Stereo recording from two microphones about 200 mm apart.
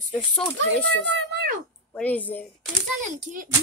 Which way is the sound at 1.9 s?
5° left (ahead or behind).